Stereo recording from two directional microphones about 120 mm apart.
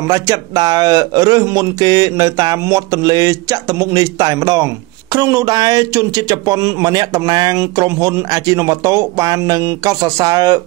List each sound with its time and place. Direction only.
0.1 s a man's voice: 30° right (ahead or behind)